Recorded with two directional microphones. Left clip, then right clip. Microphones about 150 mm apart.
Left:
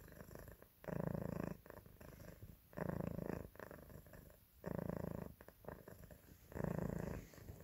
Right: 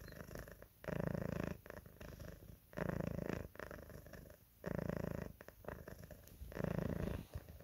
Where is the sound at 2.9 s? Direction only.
25° right (ahead or behind).